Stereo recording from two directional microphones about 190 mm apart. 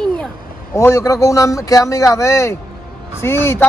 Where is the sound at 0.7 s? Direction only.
15° left (ahead or behind).